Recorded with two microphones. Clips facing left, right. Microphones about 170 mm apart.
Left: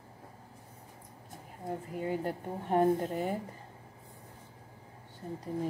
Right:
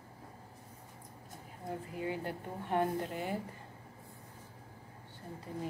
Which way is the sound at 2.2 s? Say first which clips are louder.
Left 4 dB; 40° left (ahead or behind).